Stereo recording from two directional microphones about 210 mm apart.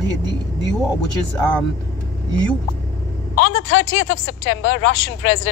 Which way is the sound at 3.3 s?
60° left (ahead or behind).